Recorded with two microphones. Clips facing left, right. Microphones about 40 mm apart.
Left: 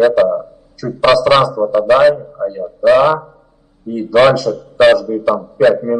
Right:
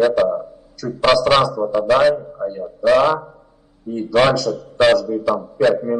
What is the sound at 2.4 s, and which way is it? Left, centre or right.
A man's voice, centre.